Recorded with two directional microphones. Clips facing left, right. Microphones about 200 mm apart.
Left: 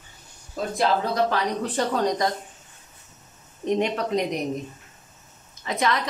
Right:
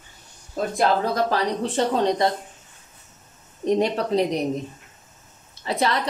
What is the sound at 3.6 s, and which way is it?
Speech, 35° right (ahead or behind).